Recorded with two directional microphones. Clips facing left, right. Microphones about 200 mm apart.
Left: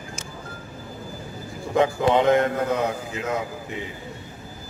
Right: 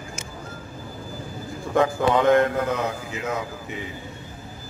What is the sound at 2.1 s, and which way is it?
Speech, 25° left (ahead or behind).